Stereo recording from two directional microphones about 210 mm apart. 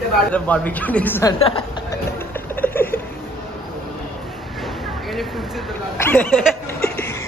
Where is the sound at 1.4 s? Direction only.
25° left (ahead or behind).